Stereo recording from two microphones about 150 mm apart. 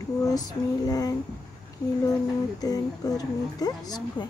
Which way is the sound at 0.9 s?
25° left (ahead or behind).